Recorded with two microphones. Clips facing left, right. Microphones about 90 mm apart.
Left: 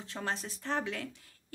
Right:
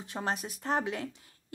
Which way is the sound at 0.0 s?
15° right (ahead or behind).